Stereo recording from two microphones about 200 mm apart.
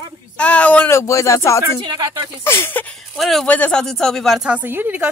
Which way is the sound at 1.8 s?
20° right (ahead or behind).